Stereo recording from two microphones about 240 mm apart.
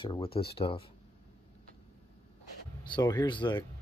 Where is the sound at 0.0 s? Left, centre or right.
Left.